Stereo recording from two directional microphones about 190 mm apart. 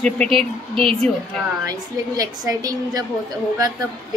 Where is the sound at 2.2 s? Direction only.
20° right (ahead or behind).